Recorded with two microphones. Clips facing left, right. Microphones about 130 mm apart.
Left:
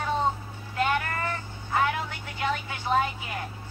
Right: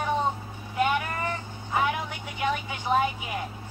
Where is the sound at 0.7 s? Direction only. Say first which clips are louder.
Right 1 dB; 15° right (ahead or behind).